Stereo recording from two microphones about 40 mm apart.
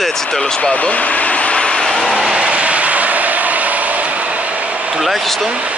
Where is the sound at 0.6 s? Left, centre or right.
Left.